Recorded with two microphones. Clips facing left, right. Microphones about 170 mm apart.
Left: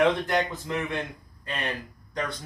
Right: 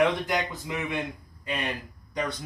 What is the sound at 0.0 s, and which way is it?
A man's voice, 10° right (ahead or behind).